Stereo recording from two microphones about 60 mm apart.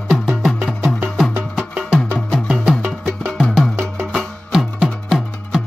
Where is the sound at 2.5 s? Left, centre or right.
Centre.